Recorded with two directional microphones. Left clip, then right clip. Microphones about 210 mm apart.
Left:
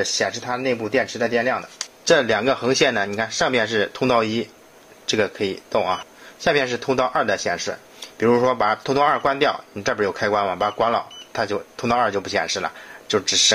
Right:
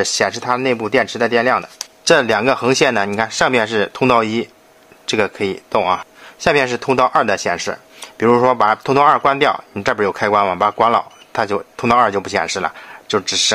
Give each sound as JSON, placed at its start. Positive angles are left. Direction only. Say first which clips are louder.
{"t": 0.0, "sound": "chopping", "louder": "right 5 dB", "side_deg": -35}
{"t": 2.1, "sound": "speech", "louder": "right 4 dB", "side_deg": -25}